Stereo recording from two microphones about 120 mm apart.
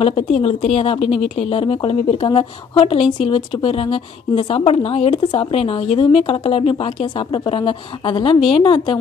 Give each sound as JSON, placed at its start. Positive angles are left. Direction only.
{"t": 0.0, "sound": "a woman's voice", "side_deg": 55}
{"t": 1.1, "sound": "speech", "side_deg": 0}
{"t": 1.4, "sound": "a woman's voice", "side_deg": 50}